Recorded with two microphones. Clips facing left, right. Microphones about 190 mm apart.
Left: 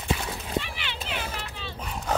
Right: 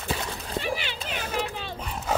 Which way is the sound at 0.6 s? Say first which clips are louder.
Right 7 dB; 45° right (ahead or behind).